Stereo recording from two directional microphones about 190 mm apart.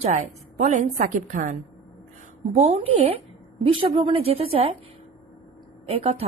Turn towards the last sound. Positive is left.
turn(degrees=-35)  # may be behind; listen again after turning